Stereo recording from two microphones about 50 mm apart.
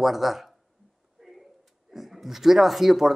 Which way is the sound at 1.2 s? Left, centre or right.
Centre.